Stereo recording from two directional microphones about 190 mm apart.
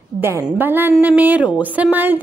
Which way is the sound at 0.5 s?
10° right (ahead or behind).